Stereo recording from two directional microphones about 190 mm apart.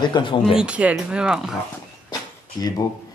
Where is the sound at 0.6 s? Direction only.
5° right (ahead or behind).